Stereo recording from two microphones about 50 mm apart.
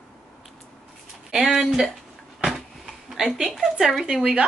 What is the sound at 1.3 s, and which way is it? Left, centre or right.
Speech, centre.